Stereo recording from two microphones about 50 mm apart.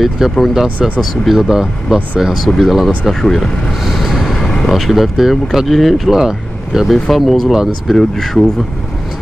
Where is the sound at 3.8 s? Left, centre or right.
Centre.